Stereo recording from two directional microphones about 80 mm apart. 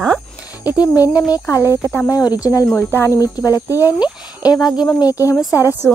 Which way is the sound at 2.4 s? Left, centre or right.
Left.